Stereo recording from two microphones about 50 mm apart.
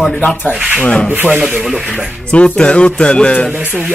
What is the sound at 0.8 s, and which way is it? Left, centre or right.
Music, left.